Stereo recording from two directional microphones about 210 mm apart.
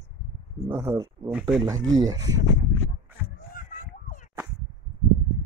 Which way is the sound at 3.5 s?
40° left (ahead or behind).